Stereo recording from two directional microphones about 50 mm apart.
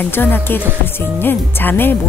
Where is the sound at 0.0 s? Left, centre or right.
Left.